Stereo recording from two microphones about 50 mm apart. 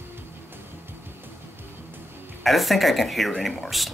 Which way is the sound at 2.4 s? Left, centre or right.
Centre.